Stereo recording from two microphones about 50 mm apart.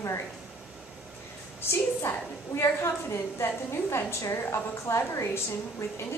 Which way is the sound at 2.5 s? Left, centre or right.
Left.